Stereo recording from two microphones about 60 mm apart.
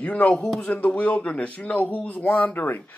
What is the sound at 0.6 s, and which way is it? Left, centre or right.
Speech, left.